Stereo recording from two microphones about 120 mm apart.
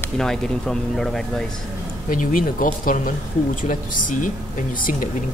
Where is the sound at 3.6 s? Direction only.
90° left.